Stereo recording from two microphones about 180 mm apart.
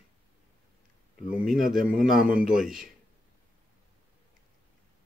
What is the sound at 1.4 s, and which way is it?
Speech, centre (ahead or behind).